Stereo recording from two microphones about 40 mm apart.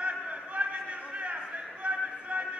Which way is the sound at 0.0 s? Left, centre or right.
Right.